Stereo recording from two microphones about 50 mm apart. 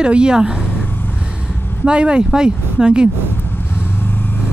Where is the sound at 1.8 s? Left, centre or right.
Centre.